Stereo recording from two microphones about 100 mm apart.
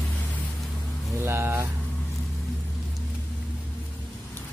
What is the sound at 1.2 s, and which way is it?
Speech, 25° right (ahead or behind).